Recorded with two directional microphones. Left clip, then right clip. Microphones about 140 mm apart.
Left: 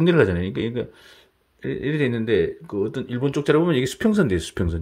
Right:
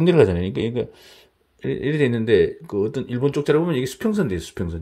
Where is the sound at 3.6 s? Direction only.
20° left (ahead or behind).